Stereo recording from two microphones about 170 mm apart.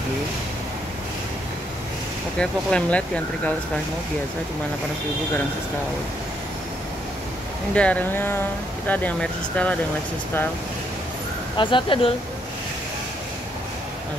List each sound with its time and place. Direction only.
2.3 s speech: 5° left (ahead or behind)
7.7 s speech: 5° left (ahead or behind)
11.5 s speech: 30° left (ahead or behind)